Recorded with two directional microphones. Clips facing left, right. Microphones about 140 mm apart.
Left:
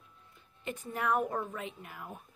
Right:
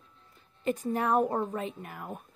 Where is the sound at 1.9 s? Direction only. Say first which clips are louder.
Right 5 dB; 55° right (ahead or behind).